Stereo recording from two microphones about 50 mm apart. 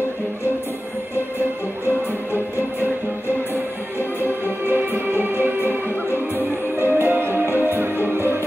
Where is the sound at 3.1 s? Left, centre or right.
Left.